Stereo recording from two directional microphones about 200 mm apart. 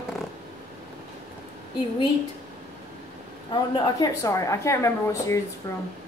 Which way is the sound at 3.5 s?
15° left (ahead or behind).